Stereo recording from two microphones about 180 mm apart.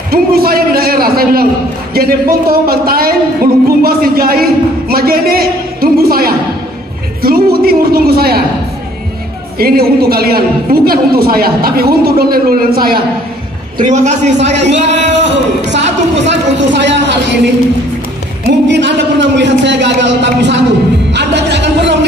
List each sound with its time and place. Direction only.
0.1 s a woman's voice: 55° right (ahead or behind)
9.6 s a woman's voice: 55° right (ahead or behind)
13.7 s a man's voice: 45° right (ahead or behind)
14.4 s speech: 75° right (ahead or behind)
15.7 s a sound: 80° right
18.4 s a man's voice: 75° right (ahead or behind)
21.1 s music: 75° right (ahead or behind)